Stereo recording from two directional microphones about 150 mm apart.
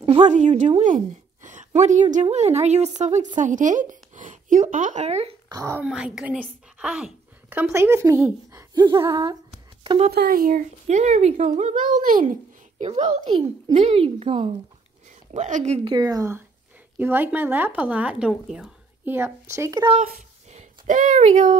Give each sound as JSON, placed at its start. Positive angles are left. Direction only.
{"t": 0.0, "sound": "a sound", "side_deg": -45}
{"t": 2.3, "sound": "speech", "side_deg": -50}
{"t": 5.5, "sound": "speech", "side_deg": -25}
{"t": 5.8, "sound": "speech", "side_deg": -5}
{"t": 10.1, "sound": "speech", "side_deg": -80}
{"t": 10.9, "sound": "speech", "side_deg": -50}
{"t": 12.7, "sound": "a child's voice", "side_deg": -50}
{"t": 15.3, "sound": "speech", "side_deg": -55}
{"t": 15.9, "sound": "speech", "side_deg": -25}
{"t": 19.0, "sound": "speech", "side_deg": -15}
{"t": 20.0, "sound": "speech", "side_deg": -50}